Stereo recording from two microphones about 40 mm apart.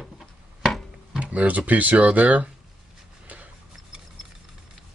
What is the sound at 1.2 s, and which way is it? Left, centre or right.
Speech, right.